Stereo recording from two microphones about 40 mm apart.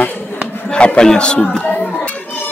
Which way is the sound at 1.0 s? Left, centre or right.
Left.